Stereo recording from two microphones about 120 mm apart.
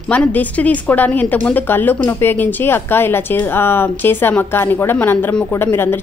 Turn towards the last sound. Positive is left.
turn(degrees=20)  # may be behind; listen again after turning